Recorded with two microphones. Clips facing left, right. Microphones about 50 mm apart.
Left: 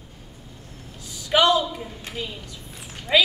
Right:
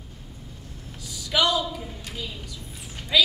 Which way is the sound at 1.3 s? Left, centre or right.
Left.